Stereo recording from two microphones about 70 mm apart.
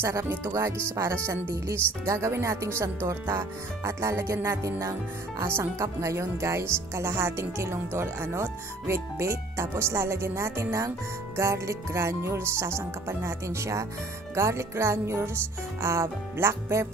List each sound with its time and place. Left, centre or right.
0.0 s speech: right